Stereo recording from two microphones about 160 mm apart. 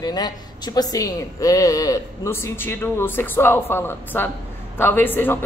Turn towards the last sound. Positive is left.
turn(degrees=10)  # may be behind; listen again after turning